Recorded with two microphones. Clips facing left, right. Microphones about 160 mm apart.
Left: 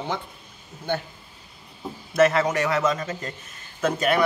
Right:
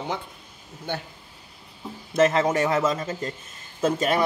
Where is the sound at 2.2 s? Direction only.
25° right (ahead or behind).